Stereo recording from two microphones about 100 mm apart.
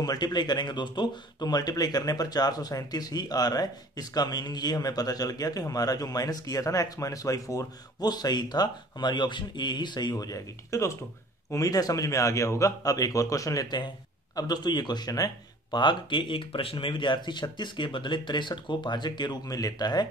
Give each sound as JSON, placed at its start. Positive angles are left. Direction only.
{"t": 0.0, "sound": "a man's voice", "side_deg": 40}